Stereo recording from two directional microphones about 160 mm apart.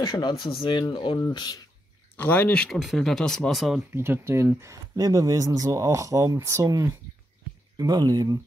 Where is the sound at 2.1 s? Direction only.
10° left (ahead or behind).